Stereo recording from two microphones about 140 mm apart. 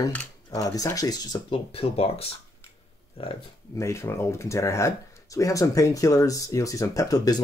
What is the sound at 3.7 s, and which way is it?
Speech, 20° left (ahead or behind).